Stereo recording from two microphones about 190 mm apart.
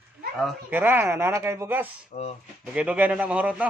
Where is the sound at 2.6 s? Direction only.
5° right (ahead or behind).